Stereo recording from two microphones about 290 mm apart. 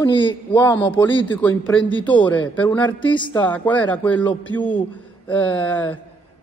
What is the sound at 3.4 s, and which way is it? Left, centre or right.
Speech, centre.